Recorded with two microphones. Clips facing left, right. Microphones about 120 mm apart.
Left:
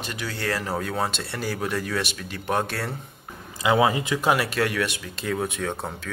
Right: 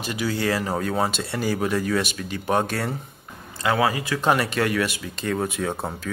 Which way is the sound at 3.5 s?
15° left (ahead or behind).